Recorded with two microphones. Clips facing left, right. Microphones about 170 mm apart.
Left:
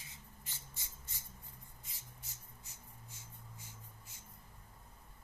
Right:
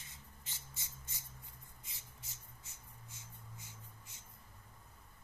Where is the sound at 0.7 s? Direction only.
20° right (ahead or behind).